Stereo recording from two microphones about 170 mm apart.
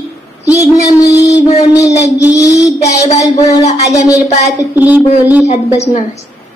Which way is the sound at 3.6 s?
40° left (ahead or behind).